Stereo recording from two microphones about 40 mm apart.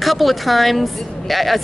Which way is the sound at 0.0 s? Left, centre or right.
Centre.